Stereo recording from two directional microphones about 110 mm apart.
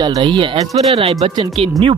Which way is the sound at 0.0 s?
45° right (ahead or behind).